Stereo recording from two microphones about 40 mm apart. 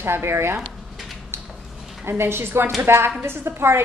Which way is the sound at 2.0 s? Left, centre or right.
Right.